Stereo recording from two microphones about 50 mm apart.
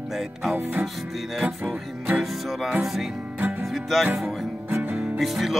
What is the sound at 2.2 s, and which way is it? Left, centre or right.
Music, centre.